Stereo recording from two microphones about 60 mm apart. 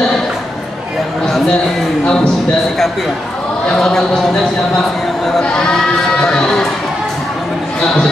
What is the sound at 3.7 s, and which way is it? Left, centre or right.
Speech, centre.